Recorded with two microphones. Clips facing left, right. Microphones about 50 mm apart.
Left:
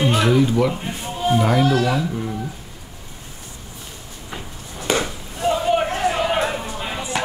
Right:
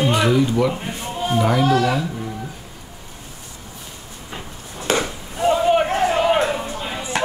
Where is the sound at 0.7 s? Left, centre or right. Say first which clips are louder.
Right 1 dB; centre.